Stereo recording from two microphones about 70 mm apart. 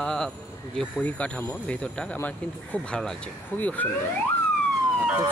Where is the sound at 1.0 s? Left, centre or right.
Left.